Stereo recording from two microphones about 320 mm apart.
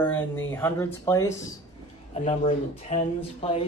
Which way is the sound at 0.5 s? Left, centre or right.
Centre.